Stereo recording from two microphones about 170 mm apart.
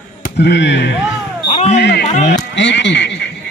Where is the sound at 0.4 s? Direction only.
85° left.